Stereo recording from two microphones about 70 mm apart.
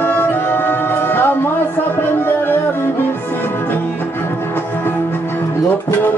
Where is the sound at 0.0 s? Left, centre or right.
Left.